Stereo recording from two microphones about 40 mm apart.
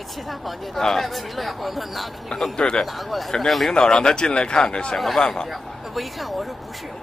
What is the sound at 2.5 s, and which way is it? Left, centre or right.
Speech, left.